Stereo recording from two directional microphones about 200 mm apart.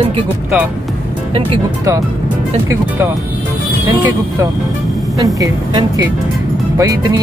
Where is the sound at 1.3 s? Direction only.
15° right (ahead or behind).